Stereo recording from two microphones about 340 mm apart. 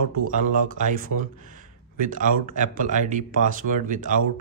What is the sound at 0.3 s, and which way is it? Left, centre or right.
Speech, right.